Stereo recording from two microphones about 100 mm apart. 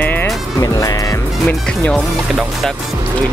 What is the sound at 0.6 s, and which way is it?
Music, 35° left (ahead or behind).